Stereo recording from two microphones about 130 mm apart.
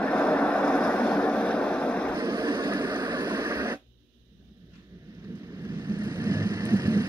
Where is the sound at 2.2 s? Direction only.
25° right (ahead or behind).